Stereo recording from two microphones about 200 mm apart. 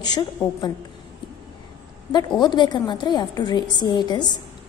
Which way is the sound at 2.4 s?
20° left (ahead or behind).